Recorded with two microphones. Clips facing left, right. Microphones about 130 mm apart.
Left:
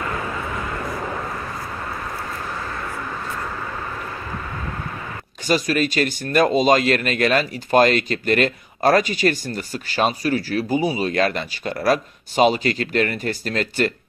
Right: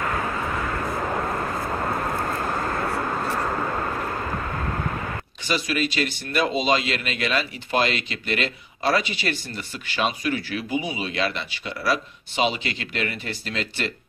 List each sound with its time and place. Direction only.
2.1 s vehicle: 50° right (ahead or behind)
5.5 s speech: 45° left (ahead or behind)